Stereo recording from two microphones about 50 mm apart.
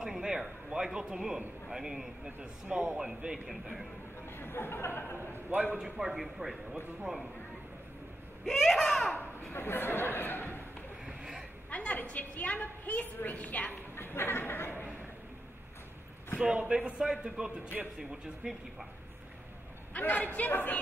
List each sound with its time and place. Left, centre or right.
0.0 s a sound: centre
1.7 s a man's voice: centre
4.3 s speech: left
5.5 s a man's voice: right
5.8 s a man's voice: centre
8.5 s a child's voice: centre
9.5 s speech: left
11.1 s a sound: centre
11.7 s a sound: left
12.0 s a woman's voice: left
13.9 s speech: left
16.3 s a man's voice: right
19.9 s a woman's voice: left